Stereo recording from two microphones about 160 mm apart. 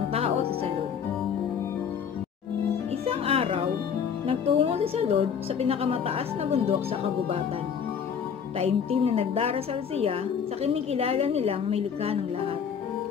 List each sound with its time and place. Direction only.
0.1 s music: 40° right (ahead or behind)
3.1 s music: 40° right (ahead or behind)
4.3 s a woman's voice: 35° right (ahead or behind)
8.5 s a woman's voice: 40° right (ahead or behind)